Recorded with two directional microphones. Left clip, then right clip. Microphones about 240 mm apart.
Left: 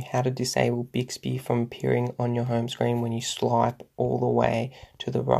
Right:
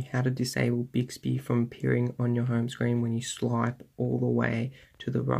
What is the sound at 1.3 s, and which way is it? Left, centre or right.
Speech, left.